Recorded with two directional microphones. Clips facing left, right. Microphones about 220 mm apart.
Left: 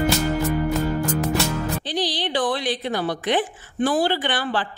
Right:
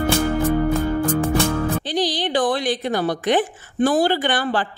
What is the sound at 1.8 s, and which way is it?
A woman's voice, 45° right (ahead or behind).